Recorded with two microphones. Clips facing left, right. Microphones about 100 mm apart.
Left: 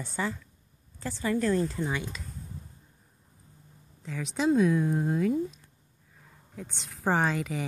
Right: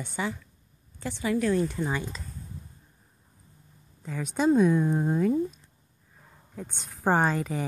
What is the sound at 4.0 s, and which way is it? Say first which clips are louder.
Speech: right 3 dB; 45° right (ahead or behind).